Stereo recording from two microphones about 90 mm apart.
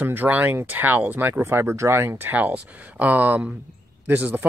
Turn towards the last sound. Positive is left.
turn(degrees=-20)  # may be behind; listen again after turning